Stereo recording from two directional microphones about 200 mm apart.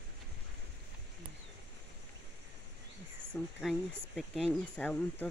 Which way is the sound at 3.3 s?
5° left (ahead or behind).